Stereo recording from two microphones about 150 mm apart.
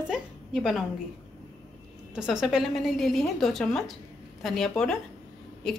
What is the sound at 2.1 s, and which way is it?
A woman's voice, 5° right (ahead or behind).